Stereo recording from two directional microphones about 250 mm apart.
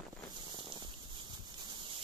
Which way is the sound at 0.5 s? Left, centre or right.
Centre.